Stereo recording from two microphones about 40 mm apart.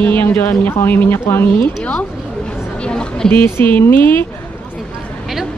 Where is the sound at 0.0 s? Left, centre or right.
Left.